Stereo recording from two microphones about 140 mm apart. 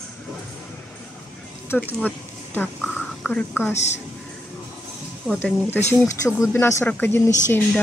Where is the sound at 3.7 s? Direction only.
55° left (ahead or behind).